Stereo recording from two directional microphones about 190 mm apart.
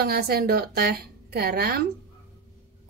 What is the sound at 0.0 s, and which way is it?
A woman's voice, 55° right (ahead or behind).